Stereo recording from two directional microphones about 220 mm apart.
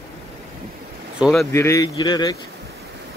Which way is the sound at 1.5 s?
15° left (ahead or behind).